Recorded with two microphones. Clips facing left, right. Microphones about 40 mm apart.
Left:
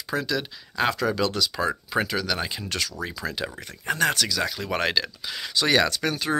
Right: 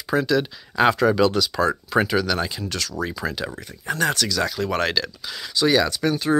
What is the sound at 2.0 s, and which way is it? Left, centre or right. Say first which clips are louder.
Speech: right 6 dB; centre.